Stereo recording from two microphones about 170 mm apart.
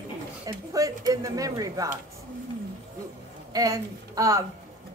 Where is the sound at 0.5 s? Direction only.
20° right (ahead or behind).